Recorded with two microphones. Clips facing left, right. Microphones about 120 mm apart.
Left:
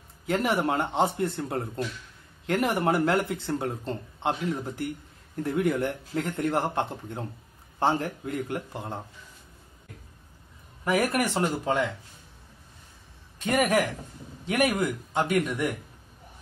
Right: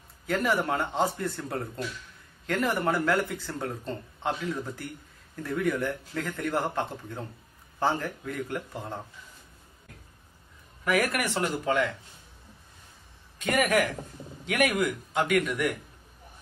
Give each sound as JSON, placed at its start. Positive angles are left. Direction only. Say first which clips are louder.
{"t": 0.3, "sound": "speech", "louder": "left 1 dB", "side_deg": 25}
{"t": 10.8, "sound": "speech", "louder": "left 2 dB", "side_deg": 25}
{"t": 13.4, "sound": "speech", "louder": "left 1 dB", "side_deg": 25}